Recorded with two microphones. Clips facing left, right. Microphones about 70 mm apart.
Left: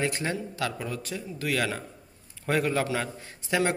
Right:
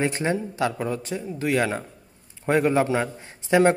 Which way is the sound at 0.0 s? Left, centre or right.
Right.